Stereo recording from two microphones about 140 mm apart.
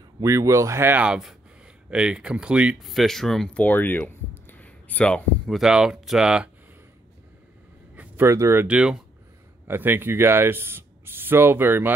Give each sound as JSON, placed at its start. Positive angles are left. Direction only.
{"t": 0.2, "sound": "speech", "side_deg": -20}
{"t": 5.6, "sound": "speech", "side_deg": -5}
{"t": 7.9, "sound": "a sound", "side_deg": -15}
{"t": 8.6, "sound": "speech", "side_deg": -5}